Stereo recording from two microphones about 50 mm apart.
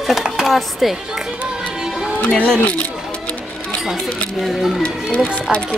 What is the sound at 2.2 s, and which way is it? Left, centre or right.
Speech, left.